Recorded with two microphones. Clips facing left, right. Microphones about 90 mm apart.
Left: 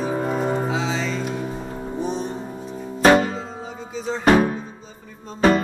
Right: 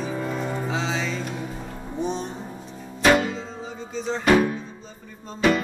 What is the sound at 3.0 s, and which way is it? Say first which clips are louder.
Music: left 4 dB; 40° left (ahead or behind).